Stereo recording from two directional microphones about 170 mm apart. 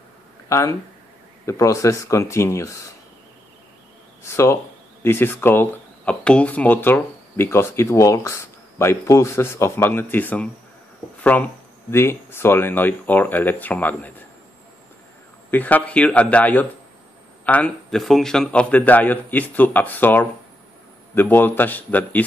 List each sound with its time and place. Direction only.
0.5 s speech: 20° left (ahead or behind)
4.2 s speech: 15° left (ahead or behind)
15.5 s speech: 10° left (ahead or behind)